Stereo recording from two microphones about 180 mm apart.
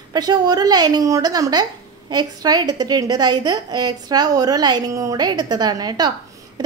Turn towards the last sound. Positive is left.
turn(degrees=-20)  # may be behind; listen again after turning